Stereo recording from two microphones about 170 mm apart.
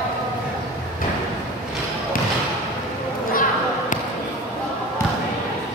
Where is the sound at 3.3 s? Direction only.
55° left (ahead or behind).